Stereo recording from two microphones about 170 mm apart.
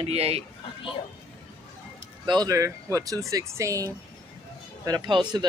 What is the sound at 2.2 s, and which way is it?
Speech, 25° right (ahead or behind).